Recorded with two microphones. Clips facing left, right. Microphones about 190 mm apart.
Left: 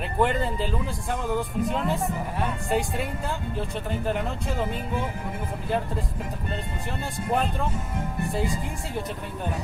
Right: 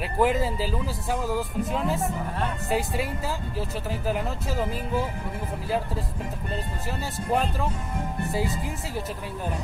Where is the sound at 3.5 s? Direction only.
5° right (ahead or behind).